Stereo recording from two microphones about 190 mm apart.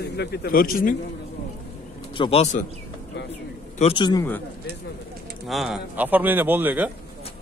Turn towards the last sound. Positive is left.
turn(degrees=-10)  # may be behind; listen again after turning